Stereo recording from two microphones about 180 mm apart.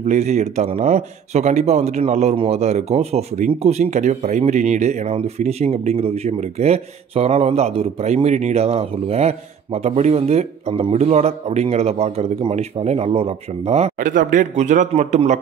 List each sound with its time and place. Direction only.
0.0 s speech: 40° right (ahead or behind)